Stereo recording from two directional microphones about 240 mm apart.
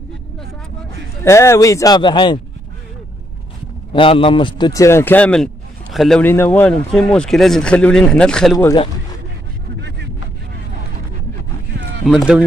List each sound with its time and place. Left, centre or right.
1.2 s a man's voice: centre
3.9 s a man's voice: left
9.8 s vehicle: right
11.7 s a sound: right
12.0 s a man's voice: centre